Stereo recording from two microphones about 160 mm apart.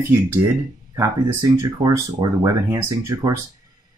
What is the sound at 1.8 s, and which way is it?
Speech, 25° right (ahead or behind).